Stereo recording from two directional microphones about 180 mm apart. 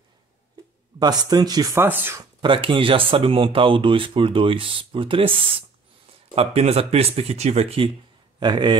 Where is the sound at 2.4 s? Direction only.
30° right (ahead or behind).